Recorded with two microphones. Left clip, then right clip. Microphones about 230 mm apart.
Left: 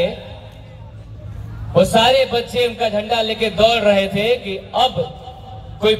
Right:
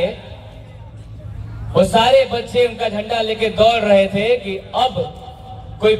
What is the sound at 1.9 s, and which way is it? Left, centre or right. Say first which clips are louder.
A man's voice: right 3 dB; left.